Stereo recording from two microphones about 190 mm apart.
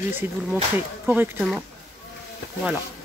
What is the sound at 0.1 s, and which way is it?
Speech, 10° right (ahead or behind).